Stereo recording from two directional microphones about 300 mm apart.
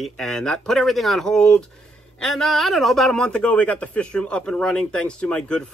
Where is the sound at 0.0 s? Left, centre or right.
Centre.